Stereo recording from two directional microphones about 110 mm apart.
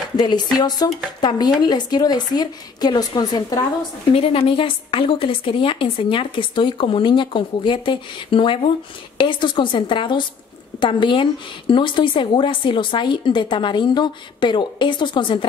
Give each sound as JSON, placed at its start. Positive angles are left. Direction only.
{"t": 0.6, "sound": "speech", "side_deg": 40}
{"t": 4.1, "sound": "a woman's voice", "side_deg": 55}